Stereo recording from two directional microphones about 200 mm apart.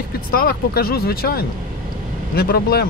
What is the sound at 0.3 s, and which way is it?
Speech, 50° left (ahead or behind).